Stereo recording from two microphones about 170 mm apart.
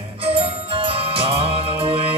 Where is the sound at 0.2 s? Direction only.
35° right (ahead or behind).